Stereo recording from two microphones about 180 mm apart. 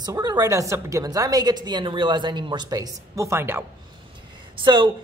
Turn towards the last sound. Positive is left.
turn(degrees=-25)  # may be behind; listen again after turning